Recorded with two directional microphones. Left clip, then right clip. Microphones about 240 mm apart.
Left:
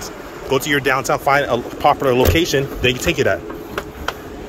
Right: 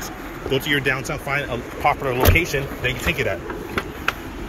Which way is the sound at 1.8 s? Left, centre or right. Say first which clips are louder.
Left 4 dB; left.